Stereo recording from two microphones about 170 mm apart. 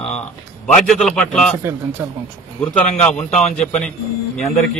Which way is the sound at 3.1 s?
40° left (ahead or behind).